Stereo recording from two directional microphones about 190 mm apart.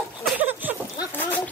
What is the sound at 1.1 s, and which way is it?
Boat, 10° left (ahead or behind).